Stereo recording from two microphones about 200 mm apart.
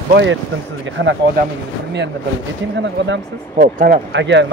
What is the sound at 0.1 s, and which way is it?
Speech, 65° right (ahead or behind).